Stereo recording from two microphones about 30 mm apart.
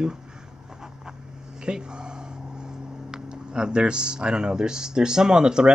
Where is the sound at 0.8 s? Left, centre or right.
Right.